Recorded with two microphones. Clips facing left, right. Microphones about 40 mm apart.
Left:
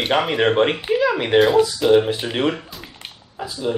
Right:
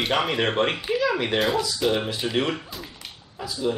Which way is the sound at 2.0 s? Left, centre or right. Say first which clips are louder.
Left 4 dB; left.